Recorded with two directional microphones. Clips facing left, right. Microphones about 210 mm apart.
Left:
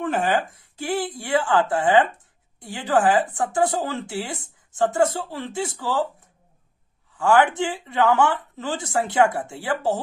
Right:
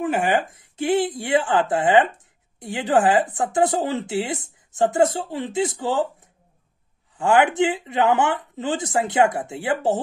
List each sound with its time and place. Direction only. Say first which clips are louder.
0.0 s speech: right 1 dB; 10° right (ahead or behind)
7.2 s speech: right 1 dB; 20° right (ahead or behind)